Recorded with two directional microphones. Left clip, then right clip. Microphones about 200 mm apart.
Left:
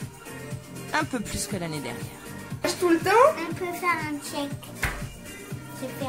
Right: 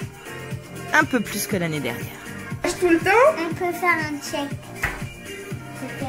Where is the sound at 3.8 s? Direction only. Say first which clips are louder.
Right 5 dB; 20° right (ahead or behind).